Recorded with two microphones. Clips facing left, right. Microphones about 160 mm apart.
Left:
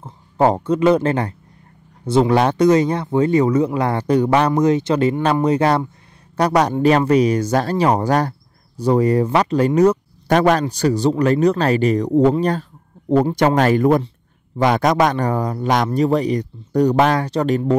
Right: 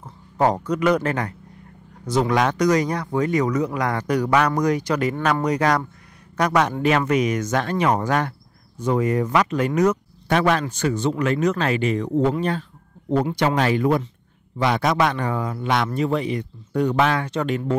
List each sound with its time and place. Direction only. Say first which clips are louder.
0.0 s speech: left 4 dB; 30° left (ahead or behind)